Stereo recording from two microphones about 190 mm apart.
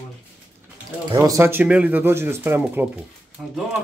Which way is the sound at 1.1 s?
15° right (ahead or behind).